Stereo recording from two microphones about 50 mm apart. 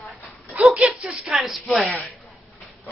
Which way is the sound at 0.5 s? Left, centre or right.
Right.